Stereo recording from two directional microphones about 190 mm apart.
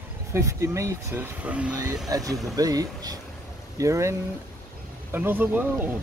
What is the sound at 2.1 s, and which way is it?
Speech, 20° right (ahead or behind).